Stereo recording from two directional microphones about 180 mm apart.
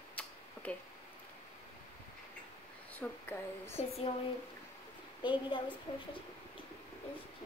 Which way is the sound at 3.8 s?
40° left (ahead or behind).